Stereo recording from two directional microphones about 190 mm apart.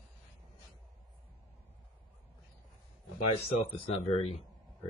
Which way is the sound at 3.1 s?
30° left (ahead or behind).